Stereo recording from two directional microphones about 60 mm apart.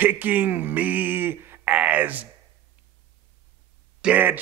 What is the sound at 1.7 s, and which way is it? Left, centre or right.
Speech, right.